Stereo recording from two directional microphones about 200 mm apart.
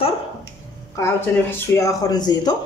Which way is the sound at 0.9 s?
15° left (ahead or behind).